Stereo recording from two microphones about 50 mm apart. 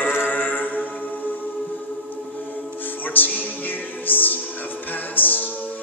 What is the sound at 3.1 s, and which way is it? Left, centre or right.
Music, left.